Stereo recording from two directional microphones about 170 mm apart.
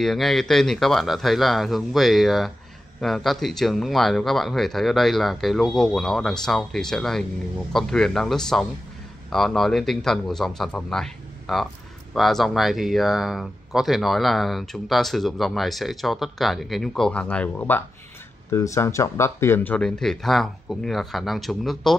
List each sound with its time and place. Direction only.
0.0 s speech: centre (ahead or behind)